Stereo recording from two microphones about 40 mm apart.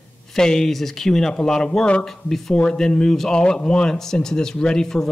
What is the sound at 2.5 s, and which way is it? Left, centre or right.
Speech, left.